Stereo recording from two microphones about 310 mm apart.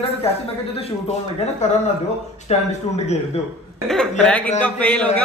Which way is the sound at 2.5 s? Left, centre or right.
Left.